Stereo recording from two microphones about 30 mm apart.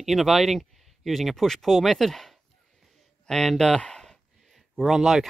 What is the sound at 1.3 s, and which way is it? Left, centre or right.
Speech, centre.